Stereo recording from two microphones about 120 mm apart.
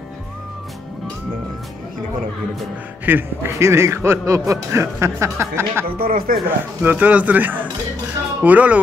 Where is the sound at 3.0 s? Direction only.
20° right (ahead or behind).